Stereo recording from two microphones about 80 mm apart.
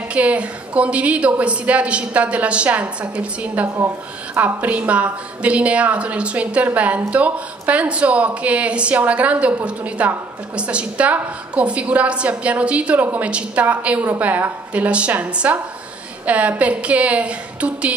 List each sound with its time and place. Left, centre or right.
0.1 s a woman's voice: centre
3.6 s speech: right
4.6 s a woman's voice: centre